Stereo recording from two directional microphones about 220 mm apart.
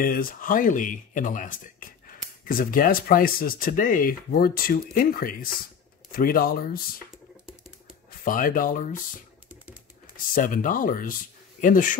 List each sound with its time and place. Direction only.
0.0 s speech: 40° left (ahead or behind)
8.2 s speech: 40° left (ahead or behind)
10.1 s speech: 40° left (ahead or behind)